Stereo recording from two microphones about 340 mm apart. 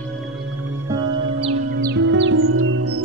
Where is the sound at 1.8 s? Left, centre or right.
Right.